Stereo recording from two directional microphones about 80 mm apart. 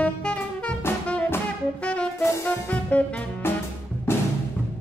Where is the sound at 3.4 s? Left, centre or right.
Left.